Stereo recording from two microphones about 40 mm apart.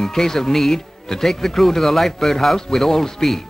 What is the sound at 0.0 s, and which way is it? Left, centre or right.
A man's voice, centre.